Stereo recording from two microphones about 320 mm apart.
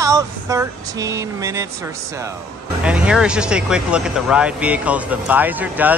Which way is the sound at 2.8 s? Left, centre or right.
Centre.